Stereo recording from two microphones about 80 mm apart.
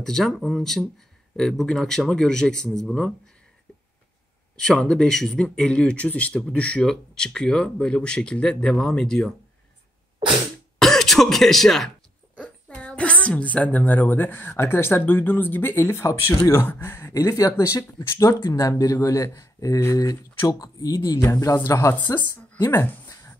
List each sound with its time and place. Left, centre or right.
0.0 s speech: centre
4.6 s speech: centre
10.8 s speech: centre
12.4 s a woman's voice: centre; by 21.9 s left
21.9 s a woman's voice: left
22.7 s a sound: left